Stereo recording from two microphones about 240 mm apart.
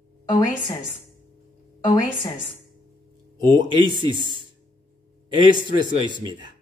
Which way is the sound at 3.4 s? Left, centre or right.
Centre.